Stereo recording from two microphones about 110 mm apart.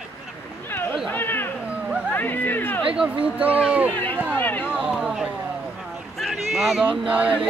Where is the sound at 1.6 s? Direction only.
10° right (ahead or behind).